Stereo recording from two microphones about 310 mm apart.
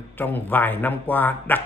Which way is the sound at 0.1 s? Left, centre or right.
Centre.